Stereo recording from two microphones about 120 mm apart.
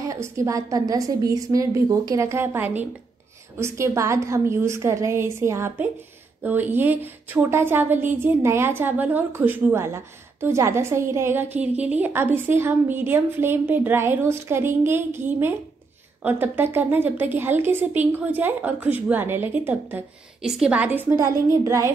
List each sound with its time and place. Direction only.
0.0 s a woman's voice: 25° right (ahead or behind)